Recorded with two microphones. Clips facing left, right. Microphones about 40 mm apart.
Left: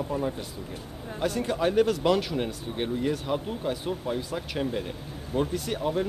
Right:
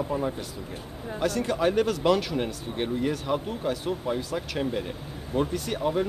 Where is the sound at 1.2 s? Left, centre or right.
Centre.